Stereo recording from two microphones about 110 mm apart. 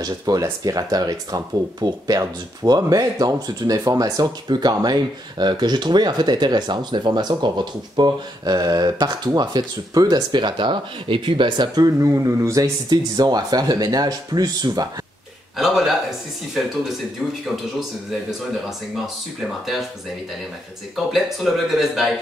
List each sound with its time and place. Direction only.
0.0 s speech: 30° right (ahead or behind)
15.5 s speech: centre (ahead or behind)
19.6 s speech: centre (ahead or behind)
20.9 s speech: centre (ahead or behind)